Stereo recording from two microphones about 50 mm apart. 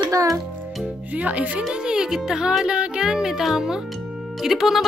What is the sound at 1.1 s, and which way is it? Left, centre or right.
Speech, right.